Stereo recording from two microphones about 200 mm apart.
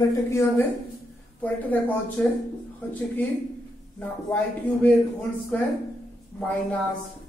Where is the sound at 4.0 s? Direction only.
10° left (ahead or behind).